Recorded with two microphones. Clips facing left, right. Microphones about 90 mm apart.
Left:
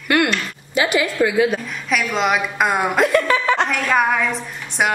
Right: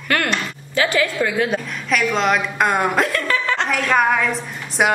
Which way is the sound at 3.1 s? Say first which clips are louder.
Left 4 dB; 15° left (ahead or behind).